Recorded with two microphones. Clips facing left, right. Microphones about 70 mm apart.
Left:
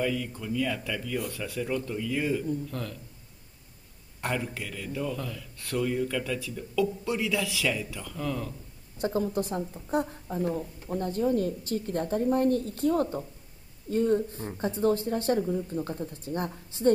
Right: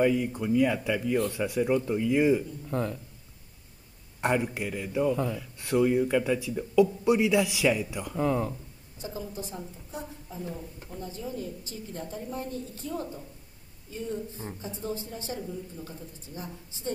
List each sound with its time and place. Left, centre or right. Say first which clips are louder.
0.0 s a man's voice: right 5 dB; right
4.2 s a man's voice: right 5 dB; right
8.9 s a woman's voice: left 9 dB; left